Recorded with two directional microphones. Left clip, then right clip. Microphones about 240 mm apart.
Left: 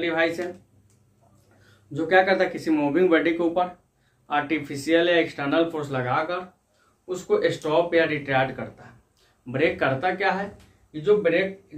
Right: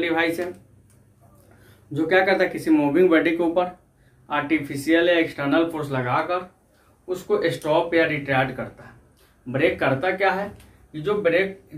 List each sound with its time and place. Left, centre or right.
0.0 s speech: centre
2.0 s speech: centre
4.3 s speech: centre